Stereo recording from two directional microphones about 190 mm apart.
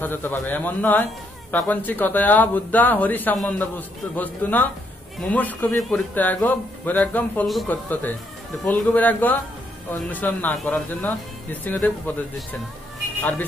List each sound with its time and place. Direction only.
0.0 s a man's voice: 10° left (ahead or behind)
13.2 s a man's voice: 10° left (ahead or behind)